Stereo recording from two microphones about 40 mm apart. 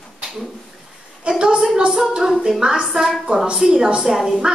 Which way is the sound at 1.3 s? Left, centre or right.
Centre.